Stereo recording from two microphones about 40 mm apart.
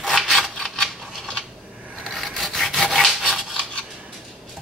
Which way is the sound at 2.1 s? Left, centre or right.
Centre.